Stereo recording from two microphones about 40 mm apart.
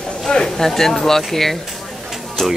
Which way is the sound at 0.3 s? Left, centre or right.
Centre.